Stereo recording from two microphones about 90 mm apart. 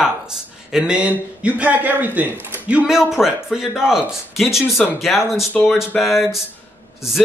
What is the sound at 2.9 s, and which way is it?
Speech, 5° right (ahead or behind).